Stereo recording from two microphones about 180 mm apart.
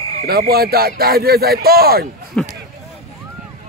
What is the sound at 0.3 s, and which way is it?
Speech, 60° right (ahead or behind).